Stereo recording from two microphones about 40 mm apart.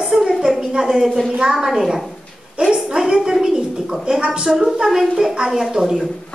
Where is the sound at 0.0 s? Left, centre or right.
Centre.